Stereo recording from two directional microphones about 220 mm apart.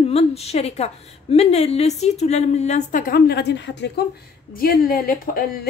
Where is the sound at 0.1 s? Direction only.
25° left (ahead or behind).